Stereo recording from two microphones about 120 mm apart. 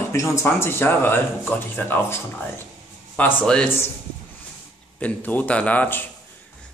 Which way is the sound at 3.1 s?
10° left (ahead or behind).